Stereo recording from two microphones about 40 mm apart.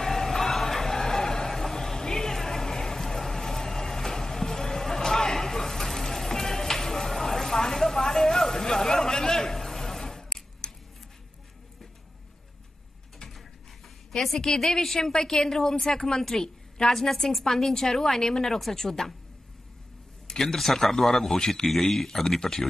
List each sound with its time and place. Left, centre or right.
0.0 s a sound: centre
14.1 s a woman's voice: centre
20.2 s a woman's voice: centre